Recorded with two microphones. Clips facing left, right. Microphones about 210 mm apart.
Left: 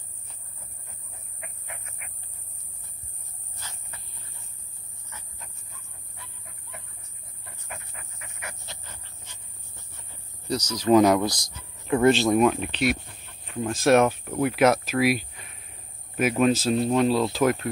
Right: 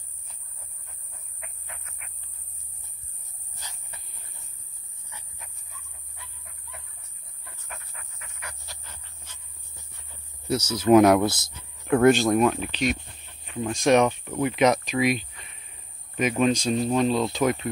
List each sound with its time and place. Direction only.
7.6 s pant: 5° left (ahead or behind)
10.5 s speech: 5° right (ahead or behind)
11.1 s speech: 25° right (ahead or behind)
12.2 s speech: centre (ahead or behind)